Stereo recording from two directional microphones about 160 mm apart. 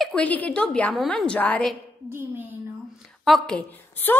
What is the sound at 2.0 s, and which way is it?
Speech, 15° right (ahead or behind).